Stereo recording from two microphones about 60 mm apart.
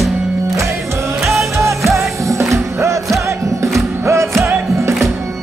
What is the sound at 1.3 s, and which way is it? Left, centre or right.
Music, right.